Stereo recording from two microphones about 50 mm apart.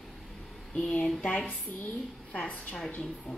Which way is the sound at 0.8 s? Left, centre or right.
Centre.